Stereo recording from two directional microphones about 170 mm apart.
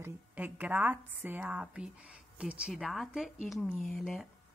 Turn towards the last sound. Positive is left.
turn(degrees=0)  # may be behind; listen again after turning